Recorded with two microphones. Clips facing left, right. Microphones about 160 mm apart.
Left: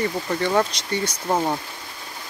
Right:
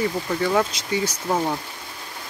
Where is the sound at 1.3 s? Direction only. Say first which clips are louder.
Left 2 dB; 20° left (ahead or behind).